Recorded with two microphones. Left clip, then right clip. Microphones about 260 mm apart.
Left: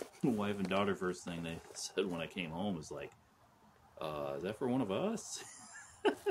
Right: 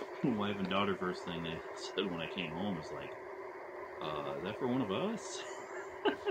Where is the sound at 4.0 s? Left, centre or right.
Centre.